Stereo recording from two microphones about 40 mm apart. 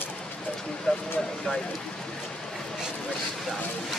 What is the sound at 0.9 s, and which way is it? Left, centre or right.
Speech, left.